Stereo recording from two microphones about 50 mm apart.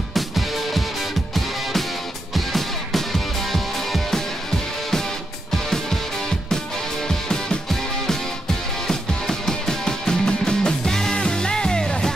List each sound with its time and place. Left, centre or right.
1.3 s music: centre
8.8 s music: centre